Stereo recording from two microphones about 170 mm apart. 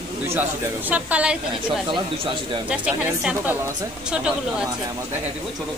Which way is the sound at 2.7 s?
5° right (ahead or behind).